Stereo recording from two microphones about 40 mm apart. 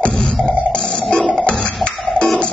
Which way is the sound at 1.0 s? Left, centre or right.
Centre.